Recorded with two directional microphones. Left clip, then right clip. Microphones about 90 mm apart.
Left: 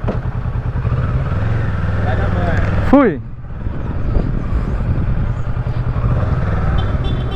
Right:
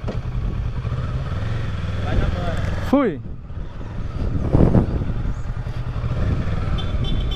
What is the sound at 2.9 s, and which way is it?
Speech, 20° right (ahead or behind).